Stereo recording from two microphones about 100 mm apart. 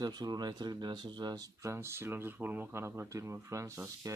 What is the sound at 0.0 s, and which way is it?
Speech, 45° right (ahead or behind).